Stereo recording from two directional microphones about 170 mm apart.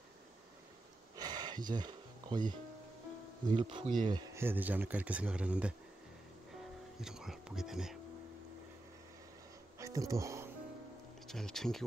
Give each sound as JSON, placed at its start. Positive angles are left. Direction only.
{"t": 1.1, "sound": "a sound", "side_deg": -25}
{"t": 3.5, "sound": "speech", "side_deg": -30}
{"t": 4.4, "sound": "speech", "side_deg": -10}
{"t": 7.0, "sound": "speech", "side_deg": -5}
{"t": 9.8, "sound": "a sound", "side_deg": -20}
{"t": 11.2, "sound": "speech", "side_deg": 0}